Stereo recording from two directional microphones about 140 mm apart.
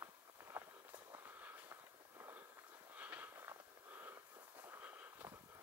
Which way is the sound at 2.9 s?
10° right (ahead or behind).